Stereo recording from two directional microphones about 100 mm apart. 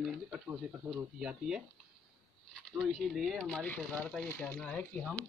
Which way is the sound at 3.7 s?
15° left (ahead or behind).